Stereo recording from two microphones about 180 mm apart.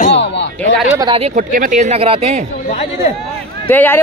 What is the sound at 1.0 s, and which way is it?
Speech, 30° right (ahead or behind).